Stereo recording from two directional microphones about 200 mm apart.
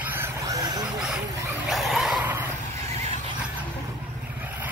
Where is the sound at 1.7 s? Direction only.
Centre (ahead or behind).